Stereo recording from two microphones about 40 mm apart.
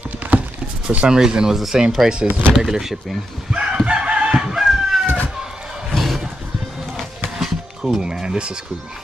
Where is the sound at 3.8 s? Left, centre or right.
Right.